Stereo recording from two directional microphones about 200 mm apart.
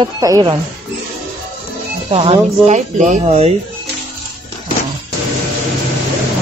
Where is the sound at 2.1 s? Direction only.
30° right (ahead or behind).